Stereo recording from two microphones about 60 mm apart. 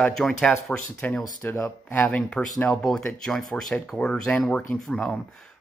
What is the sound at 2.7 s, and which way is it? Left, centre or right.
Speech, centre.